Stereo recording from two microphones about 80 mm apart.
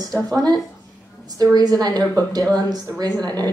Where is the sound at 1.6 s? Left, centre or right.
Right.